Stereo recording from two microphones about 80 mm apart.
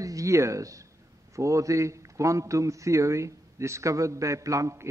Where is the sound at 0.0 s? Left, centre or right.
Right.